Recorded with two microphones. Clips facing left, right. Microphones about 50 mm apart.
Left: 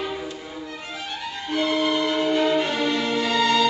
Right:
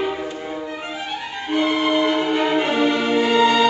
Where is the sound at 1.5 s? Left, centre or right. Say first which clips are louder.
Right 3 dB; right.